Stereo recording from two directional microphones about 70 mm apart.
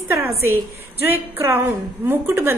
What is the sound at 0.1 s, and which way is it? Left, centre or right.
A woman's voice, right.